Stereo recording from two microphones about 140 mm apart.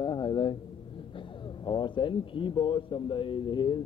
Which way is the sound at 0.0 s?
35° left (ahead or behind).